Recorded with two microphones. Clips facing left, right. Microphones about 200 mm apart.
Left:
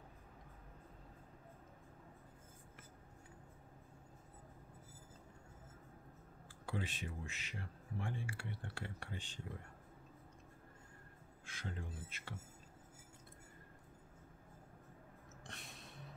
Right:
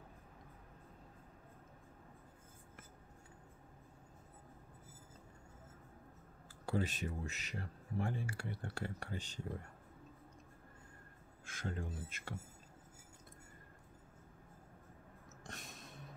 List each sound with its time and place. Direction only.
6.6 s speech: 40° right (ahead or behind)
11.4 s speech: 45° right (ahead or behind)
15.4 s a sound: 45° right (ahead or behind)